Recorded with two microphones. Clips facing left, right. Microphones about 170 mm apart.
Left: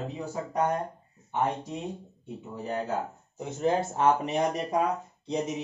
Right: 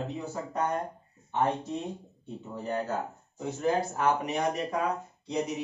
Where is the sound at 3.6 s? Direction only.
25° left (ahead or behind).